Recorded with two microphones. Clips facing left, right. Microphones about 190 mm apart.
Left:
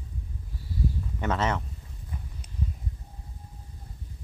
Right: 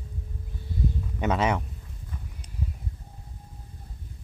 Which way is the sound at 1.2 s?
15° right (ahead or behind).